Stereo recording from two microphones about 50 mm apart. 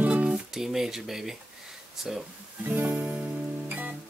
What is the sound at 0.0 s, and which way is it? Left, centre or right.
Music, right.